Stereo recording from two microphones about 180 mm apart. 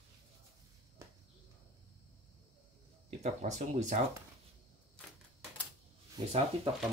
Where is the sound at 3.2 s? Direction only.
40° right (ahead or behind).